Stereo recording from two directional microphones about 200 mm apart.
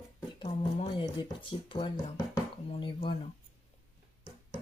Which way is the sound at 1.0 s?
25° left (ahead or behind).